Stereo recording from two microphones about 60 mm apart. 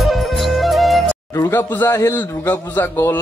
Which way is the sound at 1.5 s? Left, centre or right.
Left.